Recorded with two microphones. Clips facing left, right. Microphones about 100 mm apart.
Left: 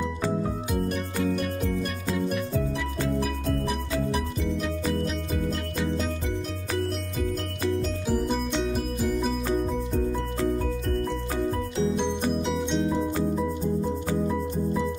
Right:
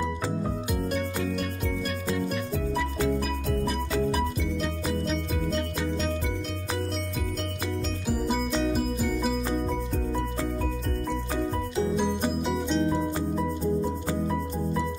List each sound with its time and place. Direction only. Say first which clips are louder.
2.0 s music: left 2 dB; centre (ahead or behind)
8.1 s music: even; 5° right (ahead or behind)
12.1 s music: left 1 dB; centre (ahead or behind)